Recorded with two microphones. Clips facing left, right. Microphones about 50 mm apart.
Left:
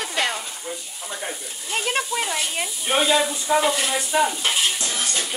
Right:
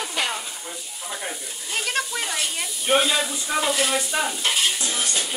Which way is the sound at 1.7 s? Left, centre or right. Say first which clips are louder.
Left 2 dB; centre.